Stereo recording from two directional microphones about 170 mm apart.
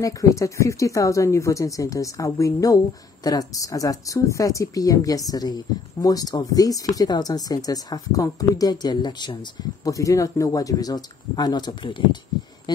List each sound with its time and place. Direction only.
0.0 s speech: 20° left (ahead or behind)